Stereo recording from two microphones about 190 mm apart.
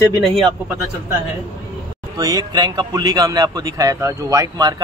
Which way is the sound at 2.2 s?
20° right (ahead or behind).